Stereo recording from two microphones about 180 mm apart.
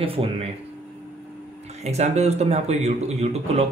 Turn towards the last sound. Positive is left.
turn(degrees=-35)  # may be behind; listen again after turning